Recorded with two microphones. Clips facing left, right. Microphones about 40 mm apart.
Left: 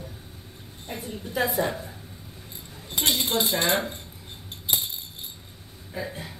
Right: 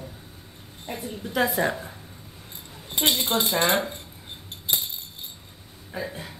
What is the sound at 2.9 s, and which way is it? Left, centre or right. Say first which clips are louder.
Speech: right 2 dB; right.